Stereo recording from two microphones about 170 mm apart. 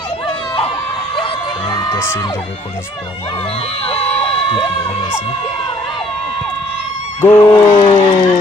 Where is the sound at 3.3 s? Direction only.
35° left (ahead or behind).